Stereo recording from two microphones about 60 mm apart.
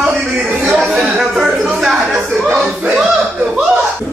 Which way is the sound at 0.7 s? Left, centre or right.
Centre.